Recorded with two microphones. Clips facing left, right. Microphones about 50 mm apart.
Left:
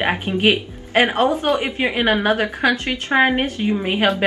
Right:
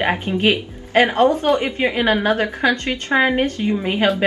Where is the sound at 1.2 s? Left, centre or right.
Centre.